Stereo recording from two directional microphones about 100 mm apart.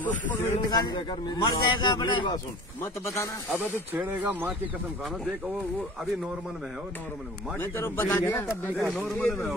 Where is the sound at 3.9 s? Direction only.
20° right (ahead or behind).